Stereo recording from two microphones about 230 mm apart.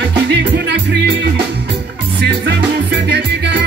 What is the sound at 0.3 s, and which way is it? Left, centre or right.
Music, right.